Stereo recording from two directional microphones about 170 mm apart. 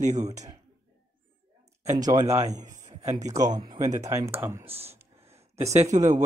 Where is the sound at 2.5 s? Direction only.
45° right (ahead or behind).